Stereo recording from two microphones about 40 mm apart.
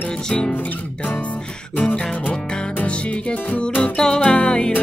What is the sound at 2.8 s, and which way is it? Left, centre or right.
Music, left.